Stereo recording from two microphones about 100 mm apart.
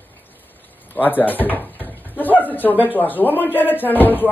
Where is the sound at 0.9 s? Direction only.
20° left (ahead or behind).